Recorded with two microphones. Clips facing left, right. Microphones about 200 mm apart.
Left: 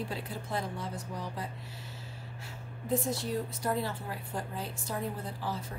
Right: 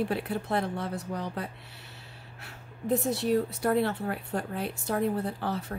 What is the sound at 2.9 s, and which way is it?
Speech, 65° right (ahead or behind).